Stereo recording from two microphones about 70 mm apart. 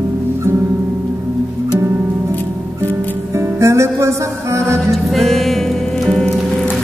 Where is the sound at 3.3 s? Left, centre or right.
Right.